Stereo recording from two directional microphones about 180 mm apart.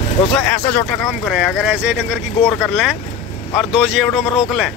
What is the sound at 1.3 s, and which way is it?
Speech, centre (ahead or behind).